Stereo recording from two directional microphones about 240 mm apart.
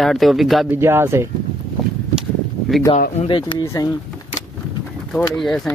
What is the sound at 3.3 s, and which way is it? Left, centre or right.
Speech, centre.